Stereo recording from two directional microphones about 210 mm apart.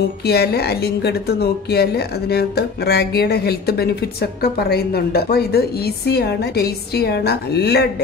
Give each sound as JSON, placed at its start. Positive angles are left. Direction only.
{"t": 0.2, "sound": "a woman's voice", "side_deg": 50}